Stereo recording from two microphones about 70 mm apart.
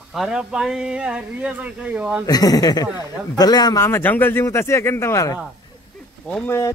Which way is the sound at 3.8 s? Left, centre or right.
Left.